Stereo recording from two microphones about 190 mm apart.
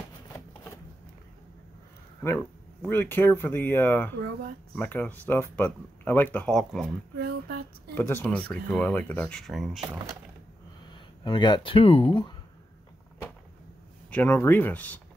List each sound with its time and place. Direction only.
2.2 s speech: 10° left (ahead or behind)
7.2 s a sound: 55° right (ahead or behind)
7.9 s speech: 10° left (ahead or behind)
10.9 s speech: 25° left (ahead or behind)
14.1 s speech: 10° left (ahead or behind)